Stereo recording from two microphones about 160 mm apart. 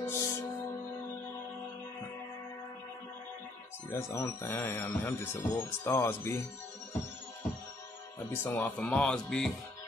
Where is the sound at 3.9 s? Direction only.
15° left (ahead or behind).